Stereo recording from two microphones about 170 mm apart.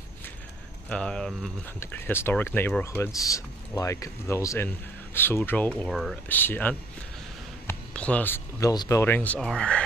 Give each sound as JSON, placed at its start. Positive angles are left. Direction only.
{"t": 0.8, "sound": "speech", "side_deg": 5}
{"t": 5.8, "sound": "speech", "side_deg": 0}
{"t": 6.2, "sound": "speech", "side_deg": 10}